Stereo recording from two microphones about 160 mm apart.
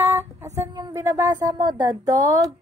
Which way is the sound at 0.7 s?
25° right (ahead or behind).